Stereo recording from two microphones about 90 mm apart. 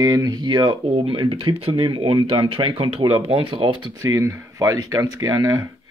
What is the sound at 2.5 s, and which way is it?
Speech, 85° right.